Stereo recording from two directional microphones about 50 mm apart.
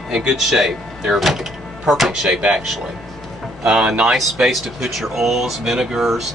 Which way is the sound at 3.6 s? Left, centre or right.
Centre.